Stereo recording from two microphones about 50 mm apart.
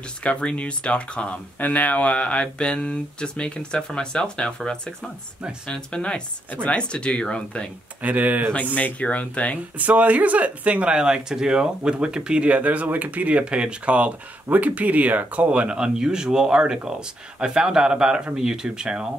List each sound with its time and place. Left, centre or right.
0.2 s speech: left
8.0 s speech: right
8.7 s speech: left
9.8 s speech: right
12.4 s speech: right